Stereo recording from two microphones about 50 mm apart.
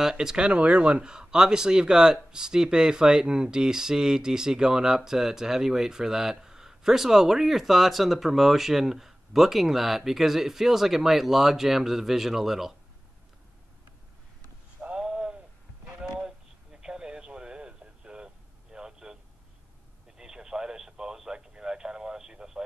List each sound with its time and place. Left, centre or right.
0.0 s speech: centre
14.8 s a sound: right
20.2 s radio: centre